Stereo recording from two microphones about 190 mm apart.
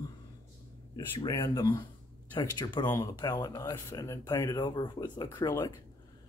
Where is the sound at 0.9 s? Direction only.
20° left (ahead or behind).